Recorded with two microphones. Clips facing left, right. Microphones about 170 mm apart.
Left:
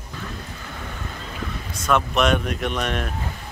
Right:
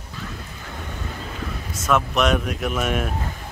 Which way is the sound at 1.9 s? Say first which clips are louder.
Even; centre (ahead or behind).